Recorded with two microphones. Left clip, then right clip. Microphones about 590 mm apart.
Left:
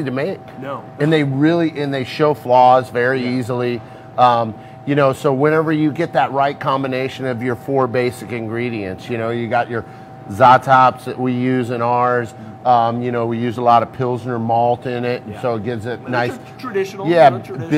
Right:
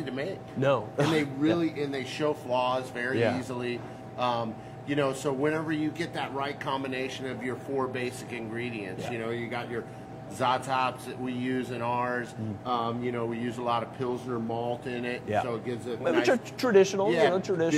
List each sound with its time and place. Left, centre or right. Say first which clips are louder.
0.0 s a man's voice: left 12 dB; left
1.4 s a man's voice: left 11 dB; left
16.7 s speech: even; right
17.0 s a man's voice: left 13 dB; left